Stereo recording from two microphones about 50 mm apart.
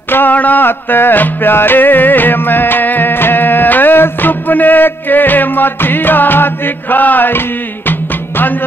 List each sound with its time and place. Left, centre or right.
0.1 s music: left